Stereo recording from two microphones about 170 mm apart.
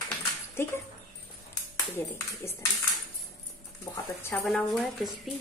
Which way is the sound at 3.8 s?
15° left (ahead or behind).